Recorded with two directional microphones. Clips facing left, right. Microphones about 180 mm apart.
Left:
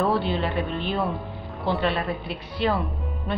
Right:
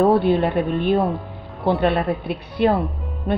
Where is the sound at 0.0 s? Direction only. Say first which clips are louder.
Right 8 dB; 55° right (ahead or behind).